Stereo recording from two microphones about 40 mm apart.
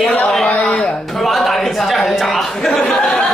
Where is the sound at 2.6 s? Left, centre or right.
Left.